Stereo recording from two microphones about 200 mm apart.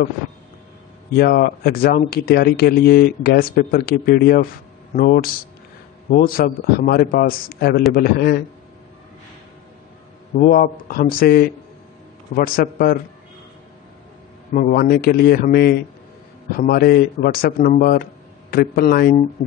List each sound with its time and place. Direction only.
1.1 s speech: 50° left (ahead or behind)
10.4 s speech: 45° left (ahead or behind)
14.5 s speech: 45° left (ahead or behind)